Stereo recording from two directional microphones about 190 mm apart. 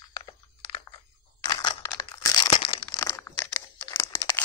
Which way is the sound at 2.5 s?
30° left (ahead or behind).